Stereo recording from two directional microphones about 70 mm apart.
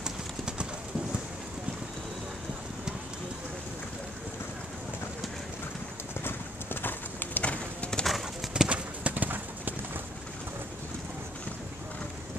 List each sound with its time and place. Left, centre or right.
0.0 s clip-clop: centre
6.2 s clip-clop: left
8.0 s clip-clop: centre
8.6 s clip-clop: centre